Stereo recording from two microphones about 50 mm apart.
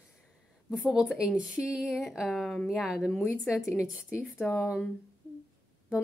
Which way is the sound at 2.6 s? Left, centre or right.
Centre.